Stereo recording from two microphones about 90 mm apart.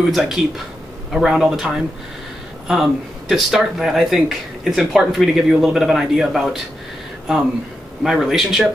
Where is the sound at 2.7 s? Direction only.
Centre (ahead or behind).